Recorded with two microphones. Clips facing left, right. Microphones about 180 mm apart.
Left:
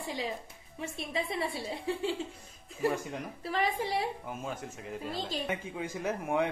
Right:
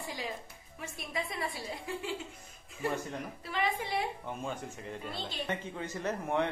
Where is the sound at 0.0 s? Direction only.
25° left (ahead or behind).